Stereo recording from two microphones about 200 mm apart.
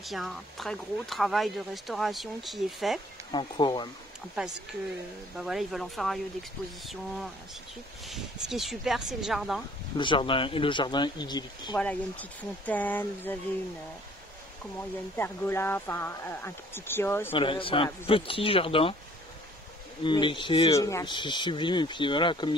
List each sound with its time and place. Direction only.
0.0 s speech: centre (ahead or behind)
3.3 s speech: 25° left (ahead or behind)
5.4 s speech: centre (ahead or behind)
8.1 s speech: centre (ahead or behind)
9.9 s speech: 25° left (ahead or behind)
11.7 s speech: 5° left (ahead or behind)
15.1 s speech: 10° left (ahead or behind)
17.3 s speech: 25° left (ahead or behind)
20.0 s speech: 25° left (ahead or behind)